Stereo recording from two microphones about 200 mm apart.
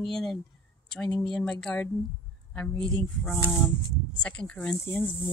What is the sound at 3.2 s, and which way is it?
Speech, 15° left (ahead or behind).